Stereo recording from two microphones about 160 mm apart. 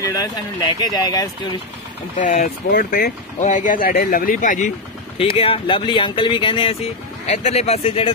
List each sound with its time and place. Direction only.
0.0 s speech: 25° left (ahead or behind)
2.1 s speech: 50° left (ahead or behind)
2.7 s speech: 65° left (ahead or behind)
5.1 s speech: 35° left (ahead or behind)
7.2 s speech: 45° left (ahead or behind)